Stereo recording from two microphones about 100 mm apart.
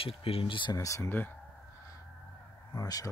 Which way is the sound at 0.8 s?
30° left (ahead or behind).